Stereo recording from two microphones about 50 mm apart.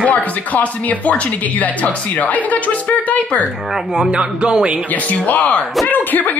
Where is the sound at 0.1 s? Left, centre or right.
Left.